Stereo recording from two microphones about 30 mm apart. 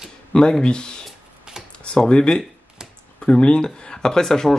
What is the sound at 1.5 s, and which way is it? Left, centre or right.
Computer keyboard, right.